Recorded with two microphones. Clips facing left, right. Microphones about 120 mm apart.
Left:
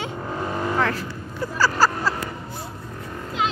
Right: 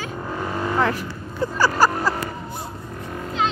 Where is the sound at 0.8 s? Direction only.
15° right (ahead or behind).